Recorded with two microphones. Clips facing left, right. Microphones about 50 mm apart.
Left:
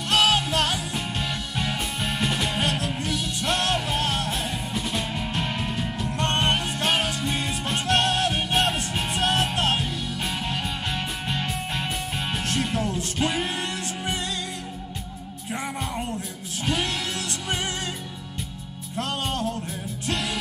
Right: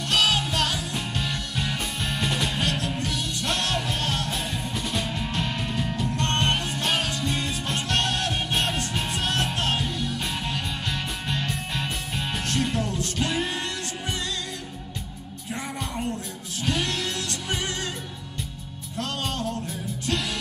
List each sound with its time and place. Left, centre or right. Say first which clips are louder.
0.1 s music: left 2 dB; centre
1.1 s music: even; centre
2.5 s music: left 1 dB; left
4.3 s music: left 1 dB; centre
5.1 s music: left 1 dB; centre
8.7 s music: left 1 dB; centre
9.9 s music: even; centre
10.5 s music: left 1 dB; left
16.6 s music: left 1 dB; centre
18.9 s music: left 2 dB; left